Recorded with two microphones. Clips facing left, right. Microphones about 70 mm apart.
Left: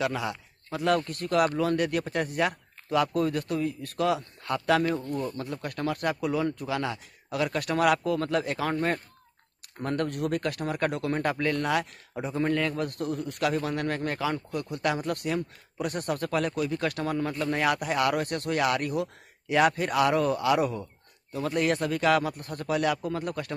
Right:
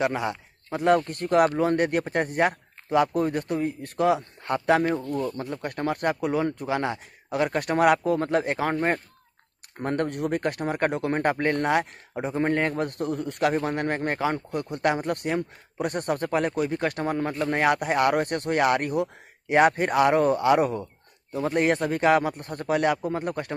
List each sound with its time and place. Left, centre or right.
0.0 s speech: right
5.0 s speech: centre
5.4 s speech: right
9.8 s speech: right